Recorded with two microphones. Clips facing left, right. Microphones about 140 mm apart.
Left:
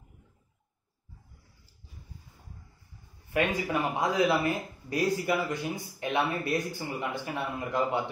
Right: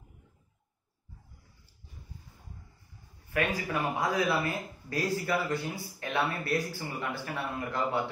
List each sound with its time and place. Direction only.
3.3 s speech: 20° left (ahead or behind)